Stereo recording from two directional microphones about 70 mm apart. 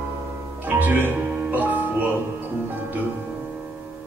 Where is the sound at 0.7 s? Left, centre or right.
Right.